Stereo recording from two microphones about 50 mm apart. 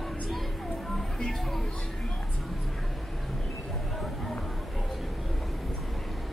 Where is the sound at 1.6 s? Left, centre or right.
Centre.